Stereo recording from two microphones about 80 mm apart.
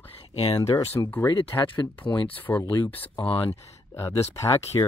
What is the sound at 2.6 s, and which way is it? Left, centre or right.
Speech, left.